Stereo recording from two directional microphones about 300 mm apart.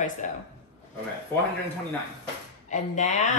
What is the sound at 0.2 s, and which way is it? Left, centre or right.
Speech, left.